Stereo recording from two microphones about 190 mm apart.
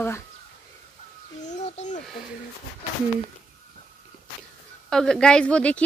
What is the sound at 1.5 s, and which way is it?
Speech, 40° left (ahead or behind).